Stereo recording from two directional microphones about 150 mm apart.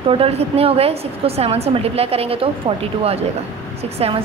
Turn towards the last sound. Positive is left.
turn(degrees=-40)  # may be behind; listen again after turning